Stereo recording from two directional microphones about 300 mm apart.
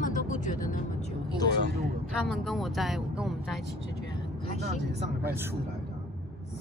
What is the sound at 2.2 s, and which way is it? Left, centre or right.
Speech, centre.